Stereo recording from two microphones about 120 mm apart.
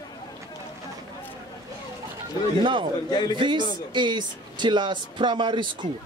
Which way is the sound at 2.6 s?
40° right (ahead or behind).